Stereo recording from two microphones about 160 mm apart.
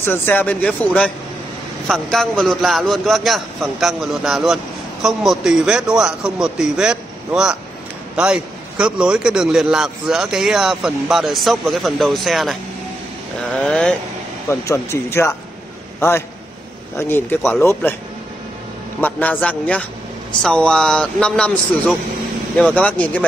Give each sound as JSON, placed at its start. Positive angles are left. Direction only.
{"t": 0.0, "sound": "a man's voice", "side_deg": 15}
{"t": 14.5, "sound": "speech", "side_deg": 15}
{"t": 18.9, "sound": "a man's voice", "side_deg": 10}